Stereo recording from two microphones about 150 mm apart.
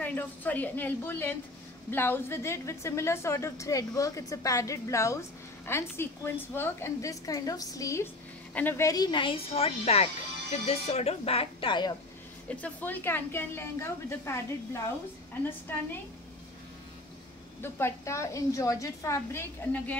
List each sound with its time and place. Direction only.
0.0 s a woman's voice: 10° left (ahead or behind); by 11.9 s 35° left (ahead or behind)
12.4 s a woman's voice: 10° left (ahead or behind)
17.6 s a woman's voice: 15° left (ahead or behind)